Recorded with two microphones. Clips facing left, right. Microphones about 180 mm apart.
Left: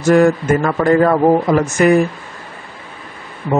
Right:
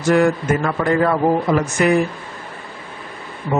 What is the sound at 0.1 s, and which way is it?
A man's voice, 45° left (ahead or behind).